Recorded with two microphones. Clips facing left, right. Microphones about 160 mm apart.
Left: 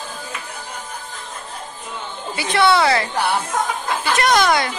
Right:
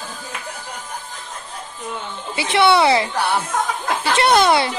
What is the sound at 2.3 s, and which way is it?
A woman's voice, 25° right (ahead or behind).